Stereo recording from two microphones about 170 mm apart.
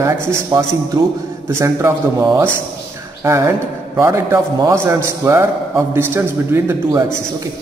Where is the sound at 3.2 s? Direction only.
15° right (ahead or behind).